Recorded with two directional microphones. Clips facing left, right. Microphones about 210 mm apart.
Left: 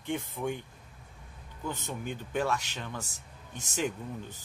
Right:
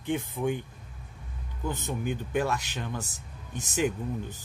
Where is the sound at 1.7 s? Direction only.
15° right (ahead or behind).